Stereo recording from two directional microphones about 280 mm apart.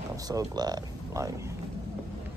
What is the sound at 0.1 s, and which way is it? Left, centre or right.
Speech, centre.